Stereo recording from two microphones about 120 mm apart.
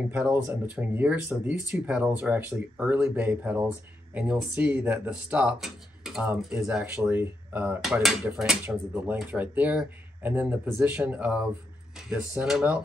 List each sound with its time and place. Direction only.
0.1 s speech: 15° right (ahead or behind)
6.8 s speech: 15° right (ahead or behind)
7.8 s speech: 5° right (ahead or behind)
8.6 s speech: 15° right (ahead or behind)